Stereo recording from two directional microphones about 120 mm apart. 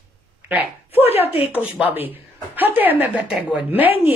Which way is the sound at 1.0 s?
55° left (ahead or behind).